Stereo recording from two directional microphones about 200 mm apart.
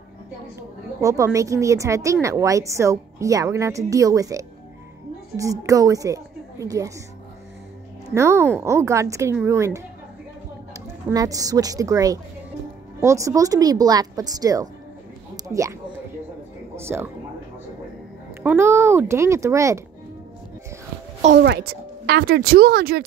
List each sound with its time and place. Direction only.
0.6 s a woman's voice: 15° right (ahead or behind)
8.1 s a woman's voice: 15° right (ahead or behind)
15.3 s a sound: 15° right (ahead or behind)
16.7 s speech: 10° right (ahead or behind)
18.4 s a woman's voice: 10° right (ahead or behind)
21.4 s speech: 50° right (ahead or behind)